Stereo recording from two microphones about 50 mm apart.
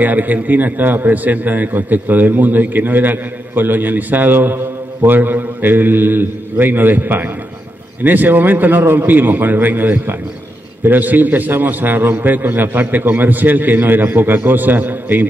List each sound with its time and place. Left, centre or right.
0.0 s a man's voice: right